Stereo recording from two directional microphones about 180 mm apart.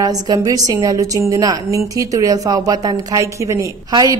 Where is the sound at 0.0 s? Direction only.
20° right (ahead or behind).